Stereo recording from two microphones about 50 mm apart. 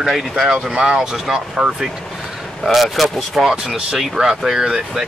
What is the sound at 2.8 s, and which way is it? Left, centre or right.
Speech, centre.